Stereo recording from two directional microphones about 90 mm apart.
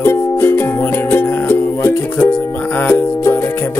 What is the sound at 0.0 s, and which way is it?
Music, 25° left (ahead or behind).